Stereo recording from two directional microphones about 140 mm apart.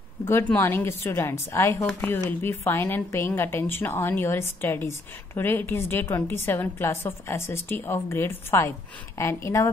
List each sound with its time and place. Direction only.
0.3 s a woman's voice: 15° left (ahead or behind)